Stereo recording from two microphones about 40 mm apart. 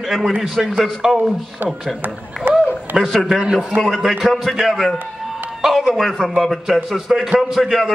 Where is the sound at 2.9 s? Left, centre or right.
Right.